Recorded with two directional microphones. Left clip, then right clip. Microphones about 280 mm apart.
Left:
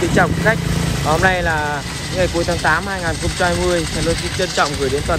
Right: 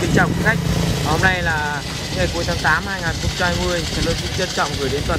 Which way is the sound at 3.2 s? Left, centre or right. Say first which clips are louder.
Left 4 dB; left.